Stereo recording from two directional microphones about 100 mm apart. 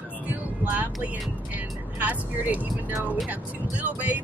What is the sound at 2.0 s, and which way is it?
Speech, 15° right (ahead or behind).